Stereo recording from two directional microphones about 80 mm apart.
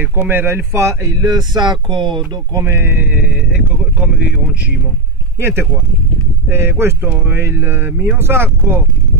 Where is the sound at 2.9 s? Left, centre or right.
Centre.